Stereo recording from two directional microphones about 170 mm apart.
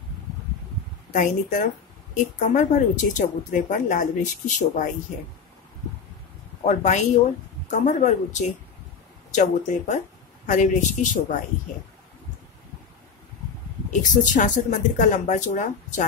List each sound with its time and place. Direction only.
1.1 s speech: 50° left (ahead or behind)
6.6 s speech: 45° left (ahead or behind)
13.8 s speech: 50° left (ahead or behind)